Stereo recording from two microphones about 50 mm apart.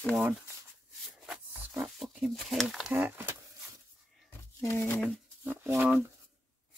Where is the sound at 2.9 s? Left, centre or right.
Right.